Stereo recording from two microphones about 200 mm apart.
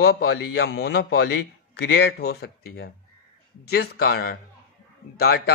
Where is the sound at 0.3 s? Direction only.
60° left (ahead or behind).